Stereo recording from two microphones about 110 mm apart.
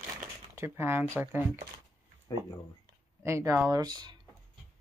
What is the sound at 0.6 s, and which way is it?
Speech, 20° right (ahead or behind).